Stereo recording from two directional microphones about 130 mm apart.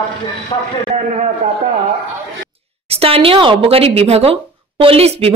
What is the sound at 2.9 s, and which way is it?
Speech, 50° right (ahead or behind).